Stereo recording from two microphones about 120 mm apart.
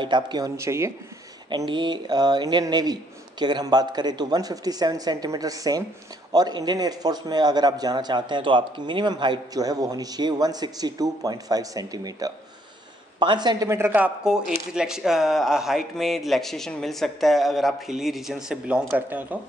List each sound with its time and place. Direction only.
0.0 s a man's voice: 40° right (ahead or behind)
0.6 s speech: 25° right (ahead or behind)
1.5 s a man's voice: 40° right (ahead or behind)
13.7 s speech: 20° right (ahead or behind)